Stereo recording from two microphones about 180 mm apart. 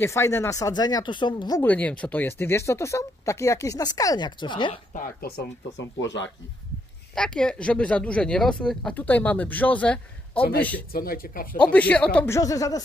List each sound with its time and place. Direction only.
0.0 s speech: 15° left (ahead or behind)
1.6 s speech: 10° left (ahead or behind); by 4.7 s 25° left (ahead or behind)
4.9 s speech: 60° left (ahead or behind); by 6.3 s 90° left
7.2 s speech: 5° left (ahead or behind)
10.9 s speech: 55° left (ahead or behind)
11.5 s speech: 5° left (ahead or behind)
12.4 s speech: 20° left (ahead or behind)